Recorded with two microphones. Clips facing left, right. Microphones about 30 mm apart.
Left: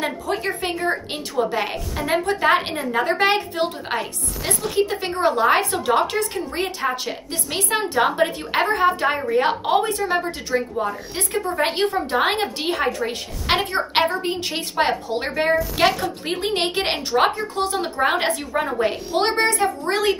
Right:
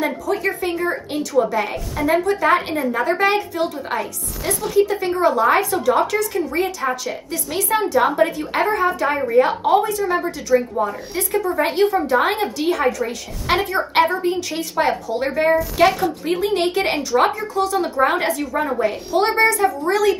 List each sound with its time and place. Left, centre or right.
0.0 s speech: left
2.0 s a woman's voice: left
2.2 s speech: left
10.5 s speech: centre
11.3 s a woman's voice: left
16.7 s speech: left